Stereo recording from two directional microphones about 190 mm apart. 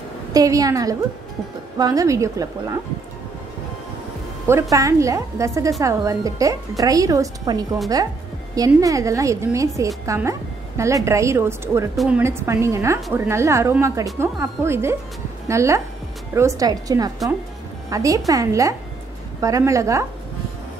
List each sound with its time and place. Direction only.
0.3 s a woman's voice: 20° right (ahead or behind)
4.5 s a woman's voice: 15° right (ahead or behind)